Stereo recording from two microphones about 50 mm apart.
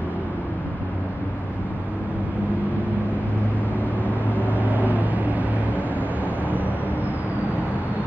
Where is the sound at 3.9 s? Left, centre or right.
Left.